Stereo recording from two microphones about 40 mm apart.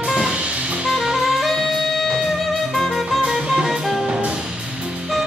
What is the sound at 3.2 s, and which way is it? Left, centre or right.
Music, centre.